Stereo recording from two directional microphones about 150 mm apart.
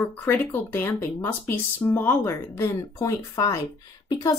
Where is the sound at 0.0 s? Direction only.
15° left (ahead or behind).